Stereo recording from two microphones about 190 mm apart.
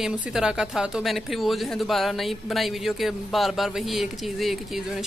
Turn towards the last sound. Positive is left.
turn(degrees=0)  # may be behind; listen again after turning